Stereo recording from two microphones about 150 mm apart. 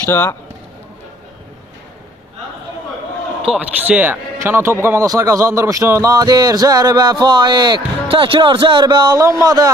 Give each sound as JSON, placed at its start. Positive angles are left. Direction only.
{"t": 0.0, "sound": "speech", "side_deg": 15}
{"t": 3.4, "sound": "a man's voice", "side_deg": -10}